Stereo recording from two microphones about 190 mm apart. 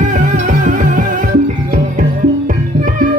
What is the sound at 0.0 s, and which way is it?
Music, 40° right (ahead or behind).